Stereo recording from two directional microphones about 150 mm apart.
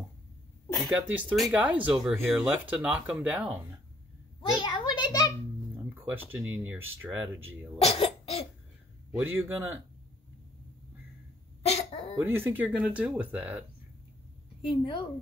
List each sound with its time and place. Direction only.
1.3 s speech: 5° right (ahead or behind)
4.4 s a sound: 30° left (ahead or behind)
5.8 s speech: 15° right (ahead or behind)
7.8 s cough: 40° left (ahead or behind)
9.2 s speech: 15° right (ahead or behind)
11.6 s cough: 45° left (ahead or behind)
12.2 s speech: 15° right (ahead or behind)
14.6 s a woman's voice: 35° left (ahead or behind)